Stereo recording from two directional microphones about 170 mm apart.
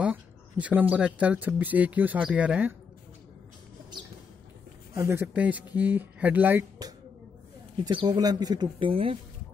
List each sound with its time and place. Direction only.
0.0 s speech: 10° right (ahead or behind)
4.9 s speech: 15° right (ahead or behind)
6.8 s a sound: 25° right (ahead or behind)
7.8 s speech: 25° right (ahead or behind)